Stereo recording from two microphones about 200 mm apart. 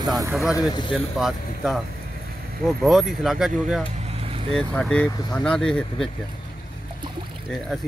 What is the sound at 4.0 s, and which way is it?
Vehicle, 30° right (ahead or behind).